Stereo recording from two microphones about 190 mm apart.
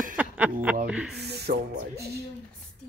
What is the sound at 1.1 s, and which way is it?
Speech, 60° right (ahead or behind).